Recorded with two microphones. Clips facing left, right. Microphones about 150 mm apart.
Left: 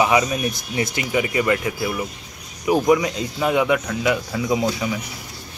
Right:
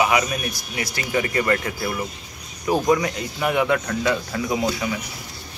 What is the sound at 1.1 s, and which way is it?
Speech, 10° left (ahead or behind).